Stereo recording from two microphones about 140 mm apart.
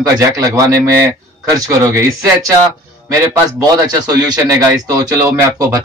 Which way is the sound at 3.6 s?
30° right (ahead or behind).